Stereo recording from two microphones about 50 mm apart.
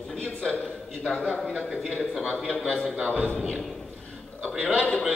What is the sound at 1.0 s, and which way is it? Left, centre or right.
Speech, centre.